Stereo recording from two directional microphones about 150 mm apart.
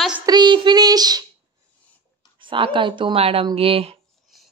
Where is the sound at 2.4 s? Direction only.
35° right (ahead or behind).